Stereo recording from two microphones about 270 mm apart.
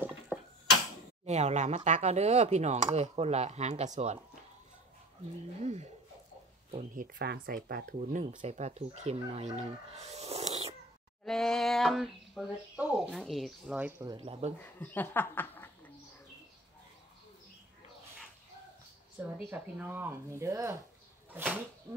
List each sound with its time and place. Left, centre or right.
0.3 s a sound: centre
1.2 s speech: right
5.6 s speech: right
11.2 s speech: centre; by 14.5 s right
14.6 s speech: centre
19.1 s speech: centre